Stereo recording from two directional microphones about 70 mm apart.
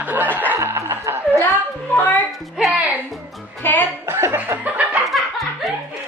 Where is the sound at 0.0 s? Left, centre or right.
Right.